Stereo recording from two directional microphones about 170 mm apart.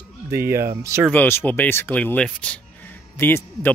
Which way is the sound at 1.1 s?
10° left (ahead or behind).